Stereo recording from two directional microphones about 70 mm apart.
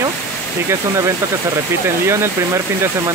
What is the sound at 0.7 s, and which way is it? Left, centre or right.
Speech, right.